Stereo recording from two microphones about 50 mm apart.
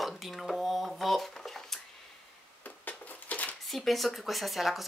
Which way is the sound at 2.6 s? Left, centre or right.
Left.